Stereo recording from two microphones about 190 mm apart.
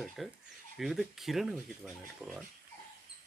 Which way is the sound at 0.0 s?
Centre (ahead or behind).